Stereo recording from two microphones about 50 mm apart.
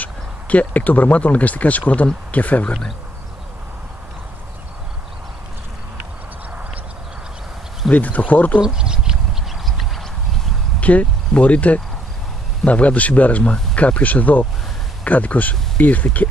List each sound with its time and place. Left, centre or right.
0.0 s speech: left
7.9 s speech: left
8.5 s speech: centre
10.8 s speech: left